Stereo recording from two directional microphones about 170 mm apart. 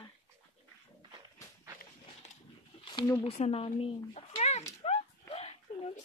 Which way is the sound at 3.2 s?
35° left (ahead or behind).